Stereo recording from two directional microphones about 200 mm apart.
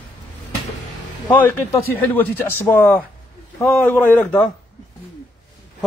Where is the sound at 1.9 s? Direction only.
10° left (ahead or behind).